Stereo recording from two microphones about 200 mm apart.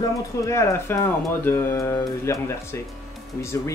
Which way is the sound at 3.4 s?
15° left (ahead or behind).